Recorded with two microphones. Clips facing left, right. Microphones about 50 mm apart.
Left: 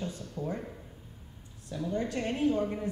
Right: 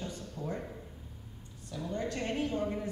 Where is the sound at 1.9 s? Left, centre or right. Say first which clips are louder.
Left 1 dB; centre.